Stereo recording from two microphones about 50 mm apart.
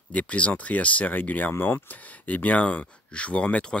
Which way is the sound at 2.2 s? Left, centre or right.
Left.